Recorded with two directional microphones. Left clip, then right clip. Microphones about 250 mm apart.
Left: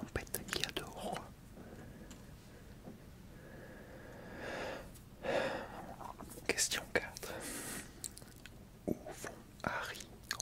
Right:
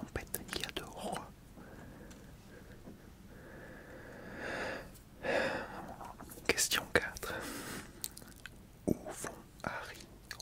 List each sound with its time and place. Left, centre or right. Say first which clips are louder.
0.0 s whispering: even; centre
4.1 s a sound: right 3 dB; centre
6.4 s whispering: right 4 dB; centre
9.6 s whispering: left 3 dB; centre